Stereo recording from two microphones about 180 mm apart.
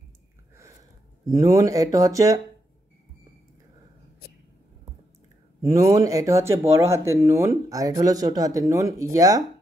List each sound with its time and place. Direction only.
1.3 s speech: 20° right (ahead or behind)
5.7 s speech: 15° right (ahead or behind)